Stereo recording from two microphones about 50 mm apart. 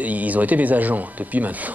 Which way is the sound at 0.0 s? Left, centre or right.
Right.